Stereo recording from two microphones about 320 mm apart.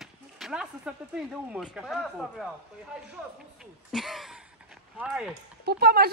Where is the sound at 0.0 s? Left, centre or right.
Centre.